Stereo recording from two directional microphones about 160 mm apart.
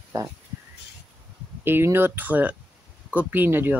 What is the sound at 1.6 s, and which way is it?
Speech, 15° right (ahead or behind).